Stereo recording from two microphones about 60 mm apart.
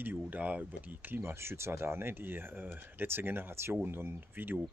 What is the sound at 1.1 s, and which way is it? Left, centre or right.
Speech, right.